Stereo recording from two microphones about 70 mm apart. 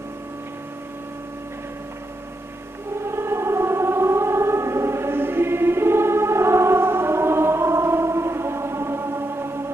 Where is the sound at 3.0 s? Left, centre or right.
Right.